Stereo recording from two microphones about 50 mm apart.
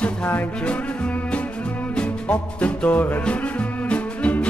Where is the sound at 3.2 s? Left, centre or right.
Left.